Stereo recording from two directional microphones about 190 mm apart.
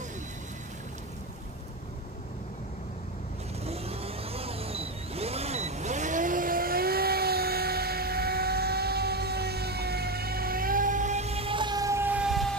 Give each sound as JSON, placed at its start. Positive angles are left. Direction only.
{"t": 3.6, "sound": "vehicle", "side_deg": -30}